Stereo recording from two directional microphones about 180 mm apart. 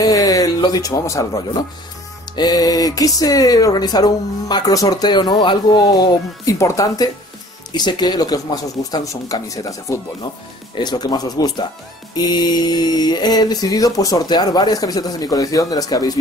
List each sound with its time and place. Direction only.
0.0 s speech: 20° left (ahead or behind)